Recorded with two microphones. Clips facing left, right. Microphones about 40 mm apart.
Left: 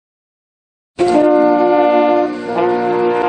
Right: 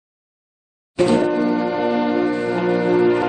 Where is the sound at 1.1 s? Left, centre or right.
Left.